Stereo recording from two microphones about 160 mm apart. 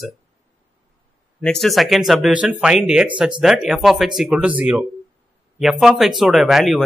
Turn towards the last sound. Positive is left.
turn(degrees=0)  # may be behind; listen again after turning